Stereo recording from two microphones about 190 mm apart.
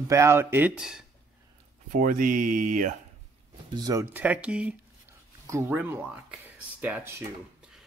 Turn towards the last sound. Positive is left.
turn(degrees=-10)  # may be behind; listen again after turning